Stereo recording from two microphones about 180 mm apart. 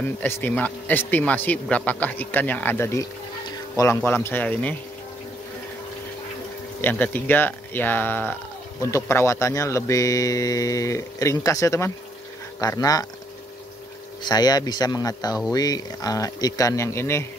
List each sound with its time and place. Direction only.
0.2 s speech: 10° left (ahead or behind)
6.8 s speech: 10° left (ahead or behind)
14.2 s speech: 20° left (ahead or behind)